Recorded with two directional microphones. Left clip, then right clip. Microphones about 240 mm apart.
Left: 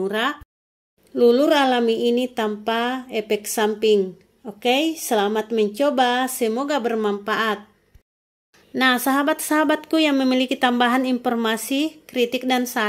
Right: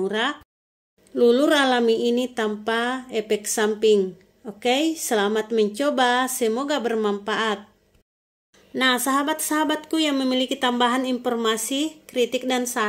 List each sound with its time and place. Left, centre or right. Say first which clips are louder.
0.0 s a woman's voice: left 1 dB; centre
8.7 s speech: left 2 dB; centre